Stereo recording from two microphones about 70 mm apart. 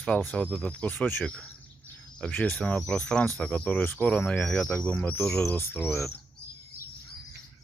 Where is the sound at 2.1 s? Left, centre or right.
Centre.